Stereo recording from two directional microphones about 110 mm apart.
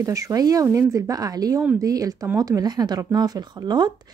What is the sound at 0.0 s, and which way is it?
Speech, 30° right (ahead or behind).